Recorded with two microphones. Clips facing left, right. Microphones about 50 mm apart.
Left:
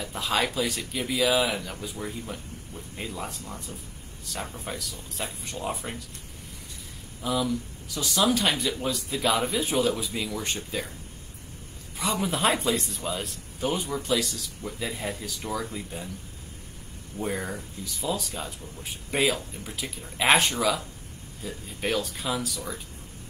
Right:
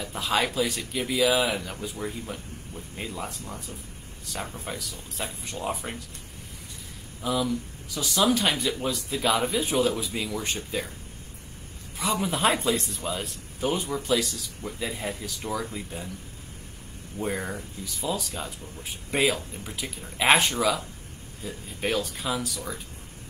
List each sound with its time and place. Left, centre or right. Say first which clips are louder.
0.0 s speech: right 1 dB; centre
4.6 s speech: even; centre
5.6 s speech: right 1 dB; centre
7.2 s speech: even; centre
12.0 s speech: right 1 dB; centre
17.1 s speech: right 1 dB; right
17.5 s speech: even; centre